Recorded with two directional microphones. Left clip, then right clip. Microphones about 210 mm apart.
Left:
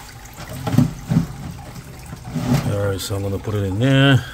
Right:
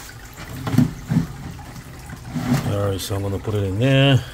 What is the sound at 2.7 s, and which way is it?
Speech, 10° left (ahead or behind).